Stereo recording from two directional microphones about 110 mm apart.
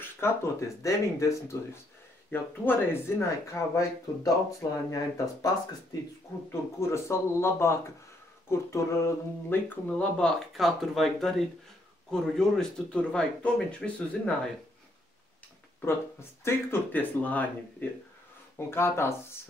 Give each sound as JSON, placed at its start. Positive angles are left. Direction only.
{"t": 0.0, "sound": "speech", "side_deg": 25}
{"t": 6.5, "sound": "speech", "side_deg": 25}
{"t": 15.8, "sound": "speech", "side_deg": 20}